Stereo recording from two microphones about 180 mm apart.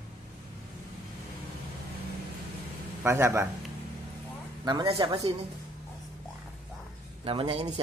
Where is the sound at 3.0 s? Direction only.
15° right (ahead or behind).